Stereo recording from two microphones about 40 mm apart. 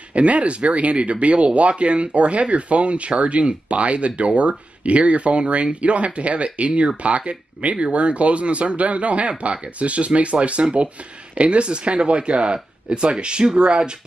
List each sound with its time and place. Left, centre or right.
0.1 s speech: right